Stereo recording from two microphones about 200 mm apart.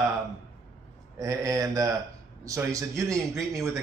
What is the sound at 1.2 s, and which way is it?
A man's voice, 15° right (ahead or behind).